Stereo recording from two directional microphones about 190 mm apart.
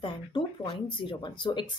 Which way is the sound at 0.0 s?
25° left (ahead or behind).